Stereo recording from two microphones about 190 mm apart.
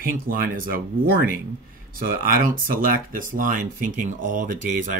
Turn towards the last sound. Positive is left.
turn(degrees=-45)  # may be behind; listen again after turning